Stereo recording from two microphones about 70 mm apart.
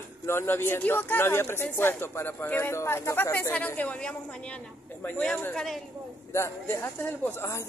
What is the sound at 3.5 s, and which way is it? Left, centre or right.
Speech, left.